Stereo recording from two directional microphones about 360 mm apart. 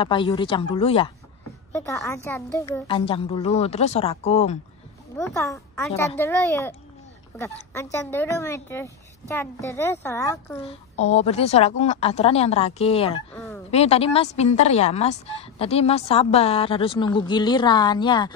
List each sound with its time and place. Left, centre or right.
0.0 s speech: centre